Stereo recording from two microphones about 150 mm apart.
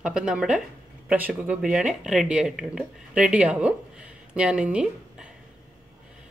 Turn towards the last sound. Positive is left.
turn(degrees=-5)  # may be behind; listen again after turning